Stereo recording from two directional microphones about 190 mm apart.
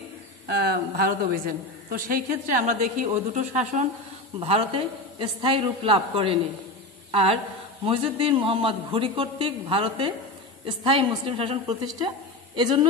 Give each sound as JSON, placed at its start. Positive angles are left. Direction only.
{"t": 0.5, "sound": "a woman's voice", "side_deg": -55}